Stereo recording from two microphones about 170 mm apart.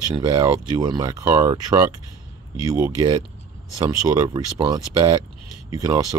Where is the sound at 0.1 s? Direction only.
20° right (ahead or behind).